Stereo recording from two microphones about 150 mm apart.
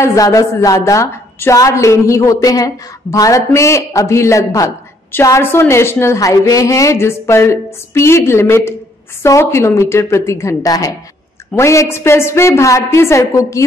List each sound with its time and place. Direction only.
0.0 s a woman's voice: 20° left (ahead or behind)